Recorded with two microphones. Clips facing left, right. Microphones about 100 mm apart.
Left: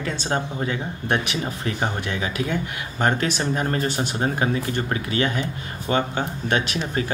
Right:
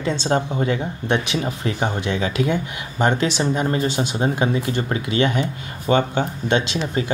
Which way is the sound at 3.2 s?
45° left (ahead or behind).